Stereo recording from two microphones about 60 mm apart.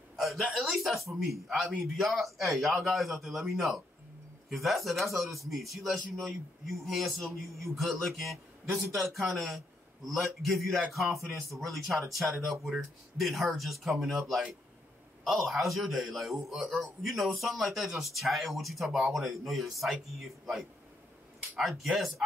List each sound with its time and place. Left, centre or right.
0.1 s a man's voice: centre
11.1 s speech: right
11.6 s a man's voice: centre